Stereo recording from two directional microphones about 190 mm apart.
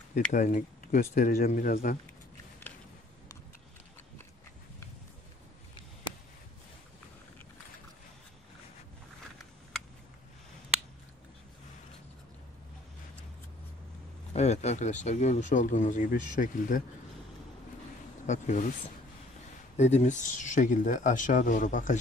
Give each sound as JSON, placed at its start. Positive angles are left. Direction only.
{"t": 0.1, "sound": "speech", "side_deg": 40}
{"t": 14.3, "sound": "speech", "side_deg": 35}
{"t": 18.2, "sound": "speech", "side_deg": 40}
{"t": 19.8, "sound": "speech", "side_deg": 35}